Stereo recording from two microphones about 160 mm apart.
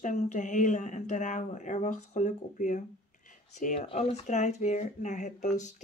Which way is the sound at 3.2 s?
50° left (ahead or behind).